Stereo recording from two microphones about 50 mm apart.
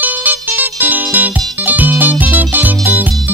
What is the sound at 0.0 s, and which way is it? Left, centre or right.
Music, right.